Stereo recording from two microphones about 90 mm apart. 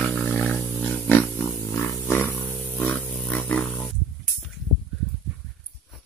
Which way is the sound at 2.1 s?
25° left (ahead or behind).